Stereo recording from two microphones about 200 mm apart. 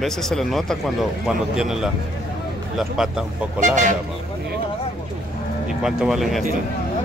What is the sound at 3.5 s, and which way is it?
Speech, 40° right (ahead or behind).